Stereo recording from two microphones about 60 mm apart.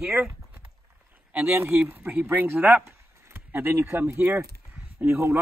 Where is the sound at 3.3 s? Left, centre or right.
Right.